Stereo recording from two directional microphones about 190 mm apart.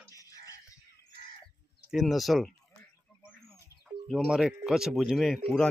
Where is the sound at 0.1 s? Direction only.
20° left (ahead or behind).